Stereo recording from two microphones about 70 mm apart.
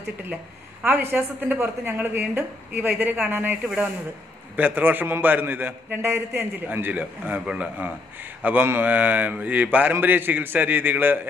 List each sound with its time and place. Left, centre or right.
0.8 s a man's voice: right
3.6 s a man's voice: centre